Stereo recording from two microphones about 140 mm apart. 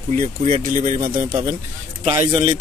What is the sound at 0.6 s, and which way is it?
Speech, 70° right (ahead or behind).